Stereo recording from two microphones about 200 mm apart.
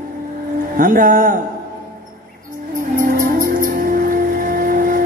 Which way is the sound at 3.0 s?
45° right (ahead or behind).